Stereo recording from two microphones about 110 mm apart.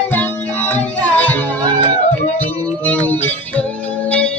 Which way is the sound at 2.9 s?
15° left (ahead or behind).